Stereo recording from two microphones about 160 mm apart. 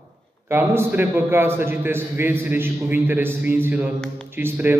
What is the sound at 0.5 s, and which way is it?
A man's voice, 15° right (ahead or behind).